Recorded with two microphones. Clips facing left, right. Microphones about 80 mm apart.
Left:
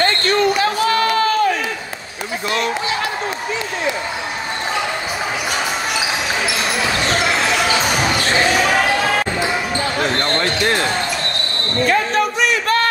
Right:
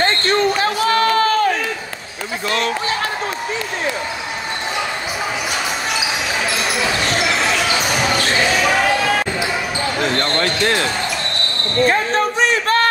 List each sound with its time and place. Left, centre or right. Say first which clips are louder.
0.0 s basketball bounce: even; right
0.8 s a sound: right 3 dB; right
2.5 s speech: even; right
11.8 s basketball bounce: right 1 dB; right